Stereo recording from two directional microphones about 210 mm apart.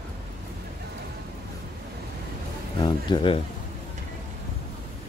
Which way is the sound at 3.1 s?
25° left (ahead or behind).